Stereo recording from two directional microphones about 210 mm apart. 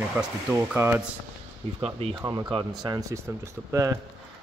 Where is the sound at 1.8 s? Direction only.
30° right (ahead or behind).